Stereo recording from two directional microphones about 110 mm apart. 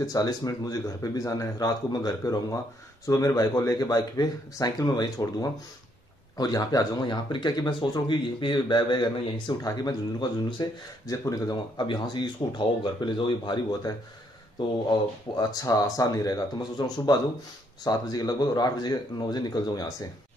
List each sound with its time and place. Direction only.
0.0 s speech: 35° left (ahead or behind)